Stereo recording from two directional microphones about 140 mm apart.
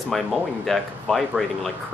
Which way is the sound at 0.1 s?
Centre (ahead or behind).